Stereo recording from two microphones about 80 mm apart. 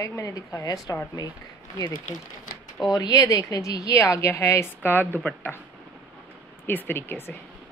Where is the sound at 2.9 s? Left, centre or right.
Left.